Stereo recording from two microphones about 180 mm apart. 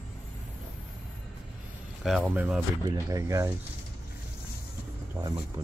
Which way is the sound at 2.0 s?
5° right (ahead or behind).